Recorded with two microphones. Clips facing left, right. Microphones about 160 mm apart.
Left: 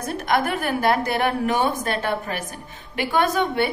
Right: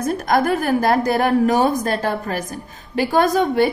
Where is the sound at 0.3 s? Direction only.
40° right (ahead or behind).